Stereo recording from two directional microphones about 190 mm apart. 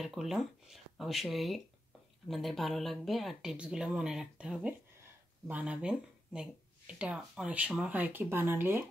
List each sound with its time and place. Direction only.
0.0 s speech: centre (ahead or behind)